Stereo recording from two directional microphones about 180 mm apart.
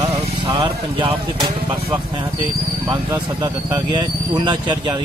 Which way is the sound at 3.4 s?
20° right (ahead or behind).